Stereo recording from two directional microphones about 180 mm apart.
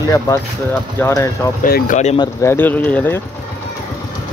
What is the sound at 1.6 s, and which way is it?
Speech, 50° left (ahead or behind).